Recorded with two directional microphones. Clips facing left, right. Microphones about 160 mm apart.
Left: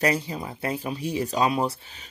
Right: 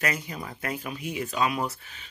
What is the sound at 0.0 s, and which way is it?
Speech, 30° left (ahead or behind).